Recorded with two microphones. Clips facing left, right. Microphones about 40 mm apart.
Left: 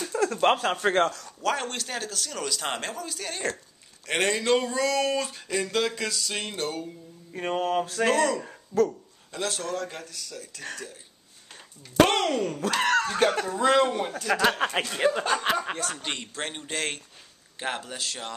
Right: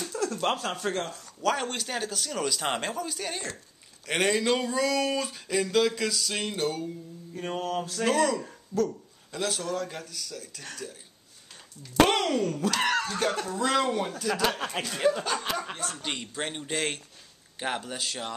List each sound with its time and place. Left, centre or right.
0.1 s speech: left
1.4 s speech: centre
7.3 s mantra: left
8.1 s speech: centre
8.4 s speech: centre
9.3 s speech: centre
12.0 s speech: centre
12.4 s a man's voice: centre
13.2 s mantra: left
13.6 s a man's voice: centre
15.3 s chuckle: left
15.7 s speech: left
16.0 s speech: centre